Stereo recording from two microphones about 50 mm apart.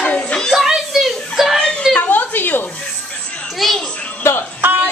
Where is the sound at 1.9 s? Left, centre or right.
Left.